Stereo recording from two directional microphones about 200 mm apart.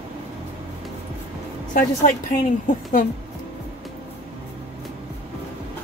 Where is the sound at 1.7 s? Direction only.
40° left (ahead or behind).